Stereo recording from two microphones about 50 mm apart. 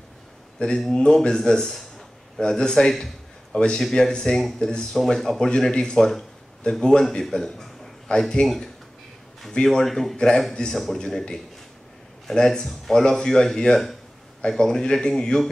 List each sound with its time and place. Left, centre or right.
0.6 s a man's voice: centre
9.5 s speech: centre